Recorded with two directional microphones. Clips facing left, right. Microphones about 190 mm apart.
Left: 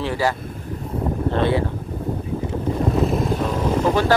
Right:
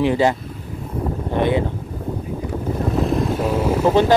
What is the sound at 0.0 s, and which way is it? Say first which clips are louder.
Speech: right 5 dB; 20° right (ahead or behind).